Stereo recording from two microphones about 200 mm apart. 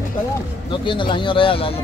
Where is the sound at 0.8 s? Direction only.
25° left (ahead or behind).